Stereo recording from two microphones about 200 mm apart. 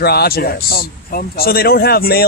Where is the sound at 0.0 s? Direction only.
50° left (ahead or behind).